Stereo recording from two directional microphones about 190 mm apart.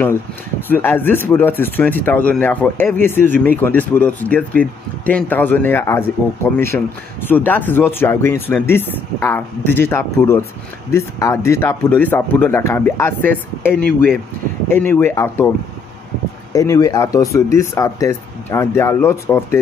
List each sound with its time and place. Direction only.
0.6 s speech: 10° left (ahead or behind)
16.5 s speech: 20° left (ahead or behind)